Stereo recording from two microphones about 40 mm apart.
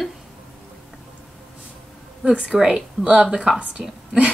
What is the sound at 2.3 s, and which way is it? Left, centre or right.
Speech, right.